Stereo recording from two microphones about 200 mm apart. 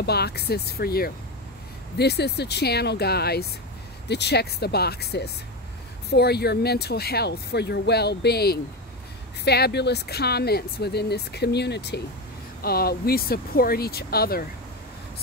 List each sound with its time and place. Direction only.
0.0 s speech: 55° left (ahead or behind)